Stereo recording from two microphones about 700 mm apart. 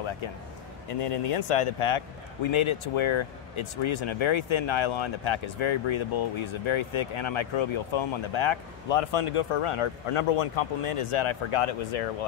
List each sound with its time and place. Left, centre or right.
0.8 s a man's voice: left